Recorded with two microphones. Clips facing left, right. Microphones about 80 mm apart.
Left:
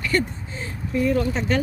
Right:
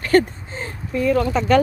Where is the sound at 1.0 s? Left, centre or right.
Right.